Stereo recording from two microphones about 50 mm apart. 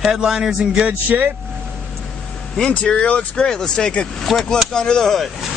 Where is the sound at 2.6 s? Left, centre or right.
Left.